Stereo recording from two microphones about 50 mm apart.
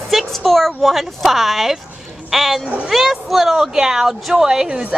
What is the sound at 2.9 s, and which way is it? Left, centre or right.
A woman's voice, centre.